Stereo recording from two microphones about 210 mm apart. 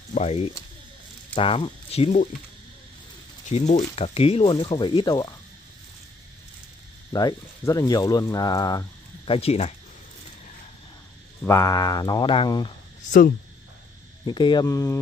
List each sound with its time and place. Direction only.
0.1 s speech: 30° left (ahead or behind)
3.4 s speech: 35° left (ahead or behind)
7.1 s speech: 20° left (ahead or behind)
11.4 s speech: 15° left (ahead or behind)
14.2 s speech: 20° left (ahead or behind)